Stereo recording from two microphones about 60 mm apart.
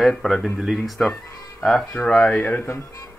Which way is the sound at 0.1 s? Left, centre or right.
Centre.